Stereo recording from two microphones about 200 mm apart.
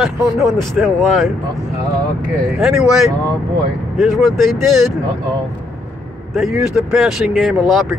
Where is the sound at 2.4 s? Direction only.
5° right (ahead or behind).